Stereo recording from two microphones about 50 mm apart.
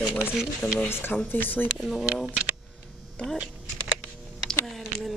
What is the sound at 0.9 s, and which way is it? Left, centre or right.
Speech, left.